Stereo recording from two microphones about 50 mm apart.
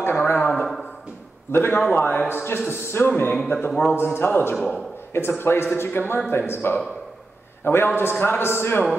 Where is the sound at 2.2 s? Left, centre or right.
Left.